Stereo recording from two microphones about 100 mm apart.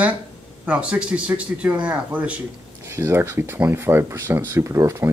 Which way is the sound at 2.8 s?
30° right (ahead or behind).